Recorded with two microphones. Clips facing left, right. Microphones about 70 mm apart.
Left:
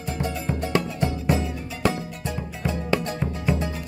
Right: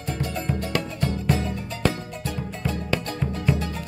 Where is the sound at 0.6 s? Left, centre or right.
Centre.